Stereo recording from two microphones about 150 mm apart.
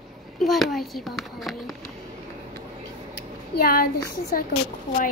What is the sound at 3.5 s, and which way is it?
Speech, 75° left (ahead or behind).